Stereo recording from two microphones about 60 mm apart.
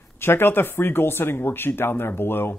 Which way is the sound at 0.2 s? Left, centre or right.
Left.